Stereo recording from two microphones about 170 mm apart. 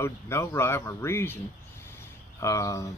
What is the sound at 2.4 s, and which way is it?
Speech, 20° left (ahead or behind).